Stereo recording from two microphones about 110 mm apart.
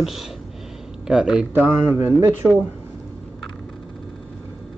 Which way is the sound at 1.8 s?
20° right (ahead or behind).